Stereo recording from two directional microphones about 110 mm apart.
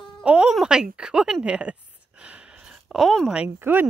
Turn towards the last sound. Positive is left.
turn(degrees=-20)  # may be behind; listen again after turning